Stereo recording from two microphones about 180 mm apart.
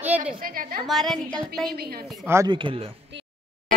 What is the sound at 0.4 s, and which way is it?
Speech, 50° right (ahead or behind).